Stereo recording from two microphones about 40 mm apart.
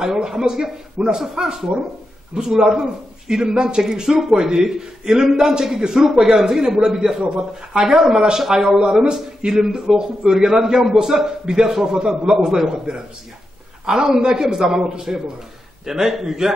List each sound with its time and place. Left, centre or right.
0.0 s speech: centre